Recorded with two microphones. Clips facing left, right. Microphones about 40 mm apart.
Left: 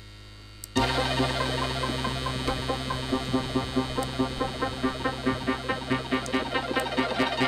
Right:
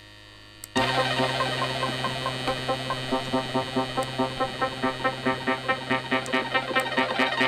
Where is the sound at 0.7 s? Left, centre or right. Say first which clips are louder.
Right 2 dB; right.